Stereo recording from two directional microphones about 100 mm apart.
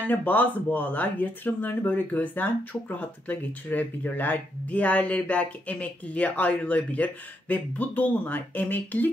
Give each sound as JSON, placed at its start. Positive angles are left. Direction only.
{"t": 0.1, "sound": "speech", "side_deg": 15}